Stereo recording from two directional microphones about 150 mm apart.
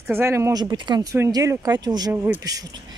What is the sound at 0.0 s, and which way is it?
Speech, 15° right (ahead or behind).